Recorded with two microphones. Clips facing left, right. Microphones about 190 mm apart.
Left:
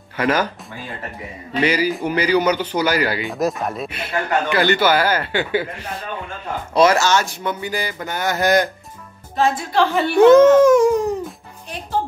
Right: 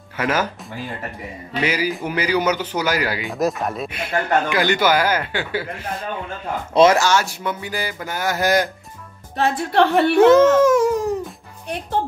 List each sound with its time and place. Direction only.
0.2 s speech: 5° right (ahead or behind)
1.6 s speech: 5° right (ahead or behind)
6.7 s speech: 20° right (ahead or behind)
9.4 s a woman's voice: 65° right (ahead or behind)
10.3 s speech: 5° right (ahead or behind)